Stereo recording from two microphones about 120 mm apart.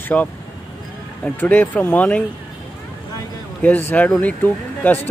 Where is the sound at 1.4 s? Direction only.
15° left (ahead or behind).